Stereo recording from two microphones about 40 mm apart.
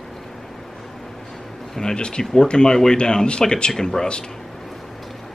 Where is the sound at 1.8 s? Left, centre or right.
Centre.